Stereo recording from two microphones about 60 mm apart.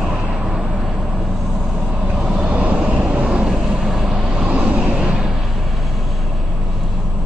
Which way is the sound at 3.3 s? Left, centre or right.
Centre.